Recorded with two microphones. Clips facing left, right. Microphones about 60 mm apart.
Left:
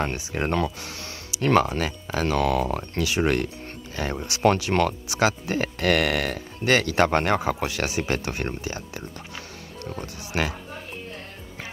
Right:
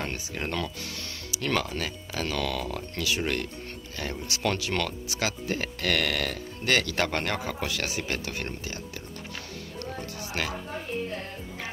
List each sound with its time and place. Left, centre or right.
0.3 s speech: left
9.8 s music: left